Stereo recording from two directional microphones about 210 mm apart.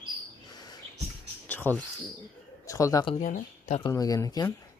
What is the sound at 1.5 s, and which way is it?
Bird, 10° left (ahead or behind).